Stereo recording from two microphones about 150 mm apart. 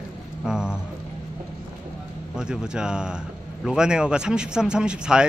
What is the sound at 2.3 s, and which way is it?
Speech, 5° right (ahead or behind).